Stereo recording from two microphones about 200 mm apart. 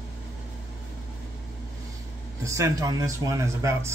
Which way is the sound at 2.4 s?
15° right (ahead or behind).